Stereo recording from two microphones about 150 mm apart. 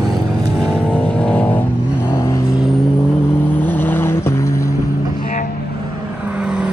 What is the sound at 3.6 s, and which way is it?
Vehicle, 15° left (ahead or behind).